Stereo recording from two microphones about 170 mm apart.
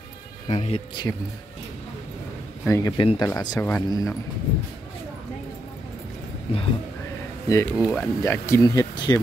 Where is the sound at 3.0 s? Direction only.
30° left (ahead or behind).